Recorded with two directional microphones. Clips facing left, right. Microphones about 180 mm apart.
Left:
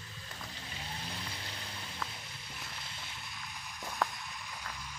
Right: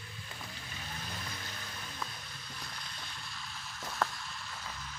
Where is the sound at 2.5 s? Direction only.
20° left (ahead or behind).